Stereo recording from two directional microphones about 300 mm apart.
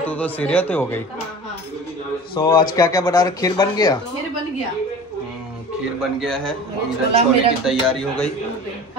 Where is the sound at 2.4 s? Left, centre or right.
Centre.